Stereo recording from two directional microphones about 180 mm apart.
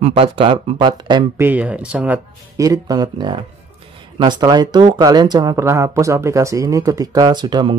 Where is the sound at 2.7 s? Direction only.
20° right (ahead or behind).